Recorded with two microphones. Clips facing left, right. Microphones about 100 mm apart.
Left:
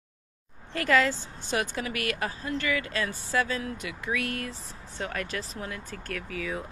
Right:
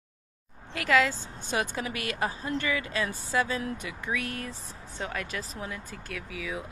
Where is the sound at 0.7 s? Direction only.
10° right (ahead or behind).